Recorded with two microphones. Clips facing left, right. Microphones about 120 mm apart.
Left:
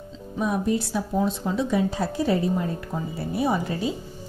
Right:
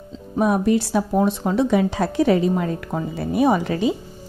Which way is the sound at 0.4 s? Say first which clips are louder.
Right 6 dB; 70° right (ahead or behind).